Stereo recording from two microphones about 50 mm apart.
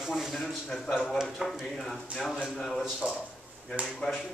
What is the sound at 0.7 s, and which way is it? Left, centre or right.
Speech, centre.